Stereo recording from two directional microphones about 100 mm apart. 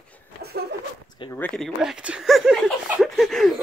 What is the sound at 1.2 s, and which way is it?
Speech, 55° left (ahead or behind).